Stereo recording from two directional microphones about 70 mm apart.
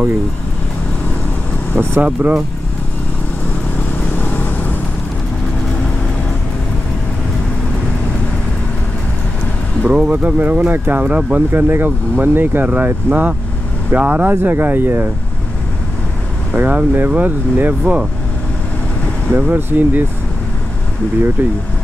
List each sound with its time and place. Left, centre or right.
2.0 s speech: right
3.9 s vehicle: left
9.9 s speech: centre
11.5 s speech: right
16.5 s speech: right
19.3 s speech: right
21.4 s speech: right